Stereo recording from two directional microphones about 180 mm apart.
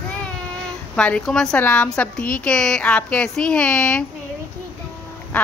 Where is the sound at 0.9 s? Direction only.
5° left (ahead or behind).